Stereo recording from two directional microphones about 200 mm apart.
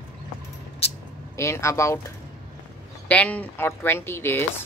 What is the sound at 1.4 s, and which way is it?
Speech, 15° left (ahead or behind).